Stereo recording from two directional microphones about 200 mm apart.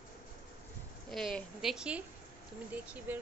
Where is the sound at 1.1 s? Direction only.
Centre (ahead or behind).